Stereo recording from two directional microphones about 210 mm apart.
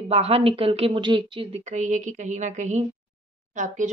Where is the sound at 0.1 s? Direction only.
30° right (ahead or behind).